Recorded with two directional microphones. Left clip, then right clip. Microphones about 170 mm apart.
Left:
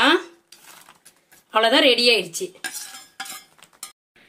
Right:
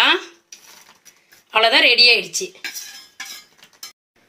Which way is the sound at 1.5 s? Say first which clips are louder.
Right 2 dB; 70° left (ahead or behind).